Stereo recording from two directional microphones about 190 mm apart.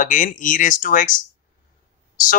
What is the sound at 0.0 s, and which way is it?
Speech, 45° left (ahead or behind).